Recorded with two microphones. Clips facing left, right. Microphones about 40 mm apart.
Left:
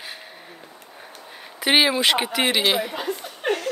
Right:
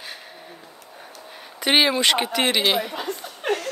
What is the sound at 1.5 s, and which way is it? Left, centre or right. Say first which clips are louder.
Speech: even; centre.